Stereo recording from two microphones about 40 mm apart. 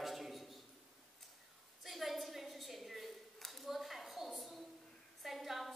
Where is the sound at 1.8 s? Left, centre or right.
Centre.